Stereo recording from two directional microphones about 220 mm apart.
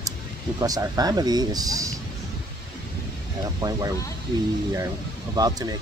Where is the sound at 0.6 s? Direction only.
15° right (ahead or behind).